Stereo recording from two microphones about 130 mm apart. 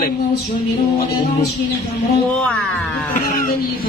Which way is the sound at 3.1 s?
90° left.